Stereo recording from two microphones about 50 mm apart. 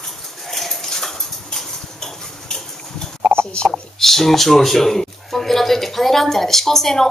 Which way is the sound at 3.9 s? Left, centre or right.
Centre.